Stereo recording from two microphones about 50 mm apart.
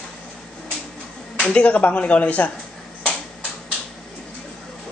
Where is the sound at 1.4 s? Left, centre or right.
Left.